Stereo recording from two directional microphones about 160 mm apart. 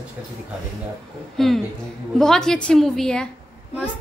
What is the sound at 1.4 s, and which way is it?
A woman's voice, 5° left (ahead or behind).